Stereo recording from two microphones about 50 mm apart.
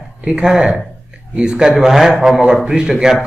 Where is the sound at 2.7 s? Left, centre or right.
Centre.